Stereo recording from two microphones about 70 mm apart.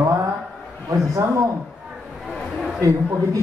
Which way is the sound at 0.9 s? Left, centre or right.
Right.